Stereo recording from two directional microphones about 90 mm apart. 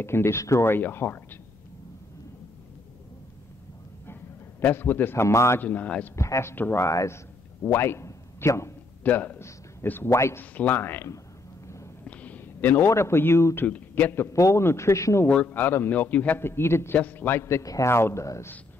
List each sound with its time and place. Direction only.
0.0 s a man's voice: 30° left (ahead or behind)
4.1 s a man's voice: 25° left (ahead or behind)
5.6 s speech: 15° left (ahead or behind)
6.1 s a man's voice: 35° left (ahead or behind)
9.0 s a man's voice: 15° left (ahead or behind); by 10.4 s 35° left (ahead or behind)
10.4 s a man's voice: 20° left (ahead or behind)
11.6 s a sound: 35° left (ahead or behind)
12.0 s a man's voice: 15° left (ahead or behind)
13.7 s a man's voice: 20° left (ahead or behind); by 15.2 s 35° left (ahead or behind)
15.2 s a man's voice: 20° left (ahead or behind)